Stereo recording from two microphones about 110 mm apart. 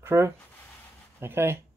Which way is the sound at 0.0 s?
25° right (ahead or behind).